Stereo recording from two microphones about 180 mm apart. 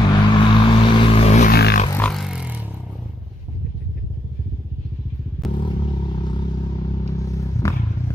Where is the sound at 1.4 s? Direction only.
60° left (ahead or behind).